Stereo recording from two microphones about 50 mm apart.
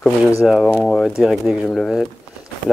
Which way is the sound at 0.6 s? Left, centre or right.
Centre.